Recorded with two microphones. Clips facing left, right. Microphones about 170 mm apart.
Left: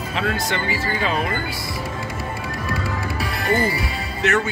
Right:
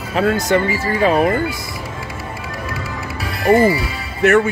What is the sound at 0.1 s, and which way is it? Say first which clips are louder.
Speech: right 9 dB; 45° right (ahead or behind).